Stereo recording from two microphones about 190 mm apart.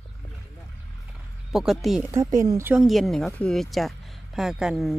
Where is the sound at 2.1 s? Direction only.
15° right (ahead or behind).